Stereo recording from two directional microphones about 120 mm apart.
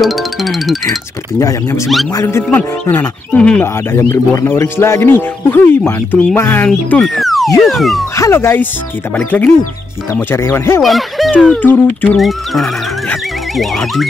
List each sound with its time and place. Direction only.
0.0 s speech: centre (ahead or behind)
1.4 s speech: 25° left (ahead or behind)
3.6 s speech: 20° left (ahead or behind)
7.2 s a sound: centre (ahead or behind)
7.6 s speech: centre (ahead or behind)
8.2 s speech: 20° left (ahead or behind)
10.8 s speech: centre (ahead or behind)
11.3 s speech: 15° left (ahead or behind)
12.2 s speech: centre (ahead or behind)